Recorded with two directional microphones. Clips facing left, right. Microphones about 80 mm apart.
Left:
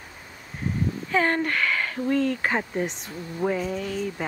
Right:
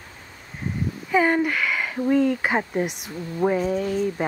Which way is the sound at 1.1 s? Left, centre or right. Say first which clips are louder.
Right 4 dB; centre.